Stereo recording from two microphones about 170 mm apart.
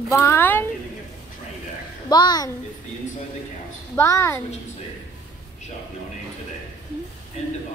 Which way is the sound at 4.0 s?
15° left (ahead or behind).